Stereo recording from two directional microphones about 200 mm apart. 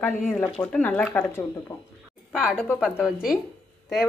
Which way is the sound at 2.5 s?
5° left (ahead or behind).